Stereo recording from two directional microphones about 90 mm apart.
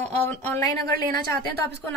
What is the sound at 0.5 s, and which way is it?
Speech, 40° left (ahead or behind).